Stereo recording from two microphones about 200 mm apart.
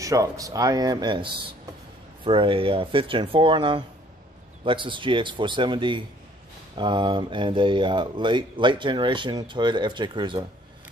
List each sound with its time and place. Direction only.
0.0 s speech: 15° right (ahead or behind)